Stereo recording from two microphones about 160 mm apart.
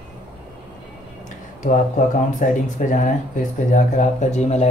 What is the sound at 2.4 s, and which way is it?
Speech, 55° left (ahead or behind).